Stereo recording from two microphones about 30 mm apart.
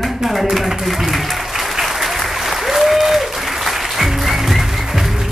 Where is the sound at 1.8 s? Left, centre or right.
Centre.